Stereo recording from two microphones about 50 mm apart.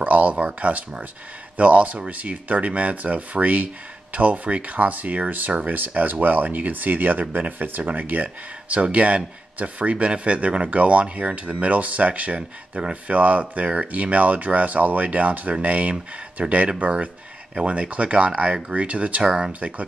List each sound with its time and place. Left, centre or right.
0.0 s speech: right